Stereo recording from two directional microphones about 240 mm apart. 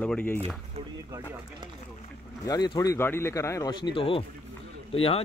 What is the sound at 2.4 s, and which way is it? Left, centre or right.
A man's voice, centre.